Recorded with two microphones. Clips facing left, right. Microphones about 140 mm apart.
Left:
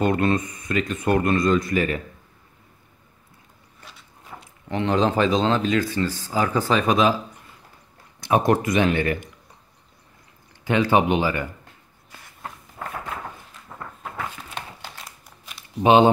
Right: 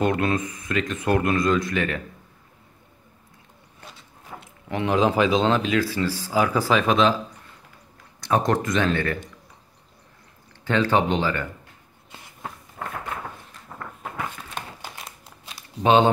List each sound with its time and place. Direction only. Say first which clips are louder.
0.0 s speech: left 2 dB; centre (ahead or behind)
4.4 s speech: left 1 dB; 10° right (ahead or behind)
8.2 s speech: left 2 dB; 15° left (ahead or behind)
10.6 s speech: left 2 dB; 15° left (ahead or behind)
15.0 s crumpling: right 2 dB; 25° right (ahead or behind)
15.8 s speech: left 2 dB; 10° left (ahead or behind)